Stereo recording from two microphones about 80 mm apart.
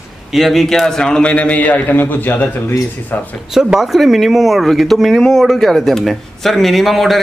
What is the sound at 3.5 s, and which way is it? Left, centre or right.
Speech, centre.